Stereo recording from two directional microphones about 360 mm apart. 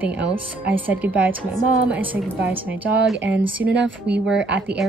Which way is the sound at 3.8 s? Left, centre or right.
Right.